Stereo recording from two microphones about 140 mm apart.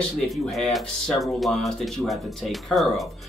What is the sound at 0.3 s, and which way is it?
A man's voice, centre (ahead or behind).